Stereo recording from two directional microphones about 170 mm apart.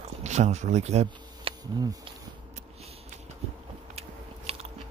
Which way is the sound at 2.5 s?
40° right (ahead or behind).